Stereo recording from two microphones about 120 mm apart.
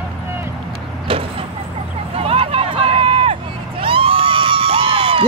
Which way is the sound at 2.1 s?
55° right (ahead or behind).